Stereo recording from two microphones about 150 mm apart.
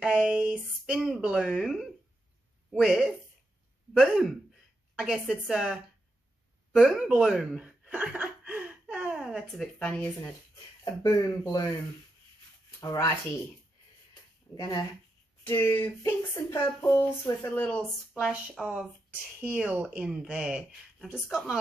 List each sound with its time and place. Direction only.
0.0 s speech: 5° right (ahead or behind)
6.7 s chuckle: 5° right (ahead or behind)
10.8 s speech: 25° left (ahead or behind)
12.8 s speech: 20° left (ahead or behind)
14.5 s speech: 25° left (ahead or behind); by 21.5 s centre (ahead or behind)